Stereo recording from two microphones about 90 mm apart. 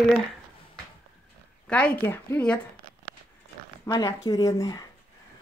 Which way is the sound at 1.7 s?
15° left (ahead or behind).